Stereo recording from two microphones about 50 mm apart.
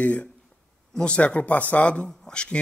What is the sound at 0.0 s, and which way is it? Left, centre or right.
Speech, left.